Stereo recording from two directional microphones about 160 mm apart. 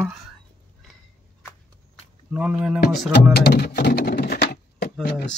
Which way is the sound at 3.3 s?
85° left.